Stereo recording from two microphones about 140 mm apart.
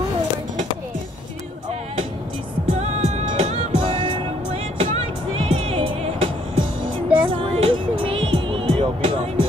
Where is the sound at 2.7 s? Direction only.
50° right (ahead or behind).